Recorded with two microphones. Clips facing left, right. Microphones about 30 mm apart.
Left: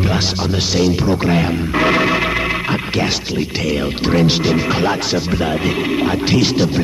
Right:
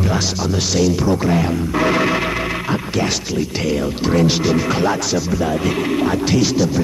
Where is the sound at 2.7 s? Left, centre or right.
Left.